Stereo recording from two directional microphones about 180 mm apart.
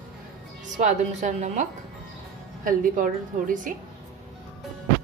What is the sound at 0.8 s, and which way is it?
A woman's voice, 40° right (ahead or behind).